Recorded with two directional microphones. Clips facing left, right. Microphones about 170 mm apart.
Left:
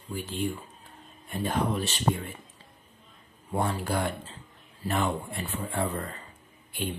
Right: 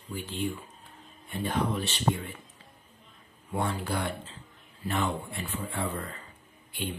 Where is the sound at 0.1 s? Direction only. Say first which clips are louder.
Left 2 dB; 45° left (ahead or behind).